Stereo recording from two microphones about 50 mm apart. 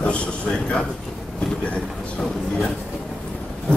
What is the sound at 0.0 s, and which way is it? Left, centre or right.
Speech, left.